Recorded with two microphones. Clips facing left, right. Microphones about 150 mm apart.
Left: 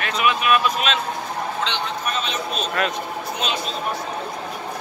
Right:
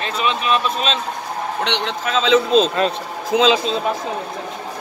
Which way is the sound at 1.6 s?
75° right (ahead or behind).